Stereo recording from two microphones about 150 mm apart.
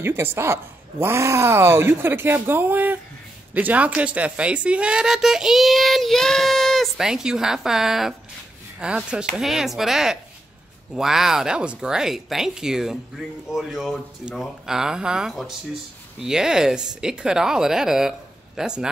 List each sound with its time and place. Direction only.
0.0 s a woman's voice: 15° right (ahead or behind)